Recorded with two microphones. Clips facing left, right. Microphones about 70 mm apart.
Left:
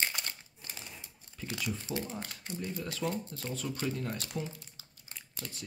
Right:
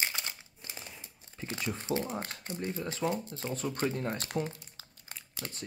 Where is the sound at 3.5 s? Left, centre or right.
Right.